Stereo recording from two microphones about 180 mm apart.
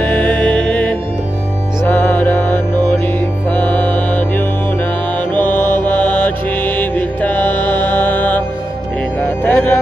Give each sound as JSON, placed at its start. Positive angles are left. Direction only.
{"t": 0.0, "sound": "music", "side_deg": 10}
{"t": 3.5, "sound": "music", "side_deg": 10}
{"t": 5.3, "sound": "mantra", "side_deg": 10}
{"t": 9.2, "sound": "music", "side_deg": 10}